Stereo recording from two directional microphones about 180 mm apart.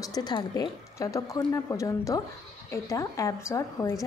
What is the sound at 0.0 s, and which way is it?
A woman's voice, 20° left (ahead or behind).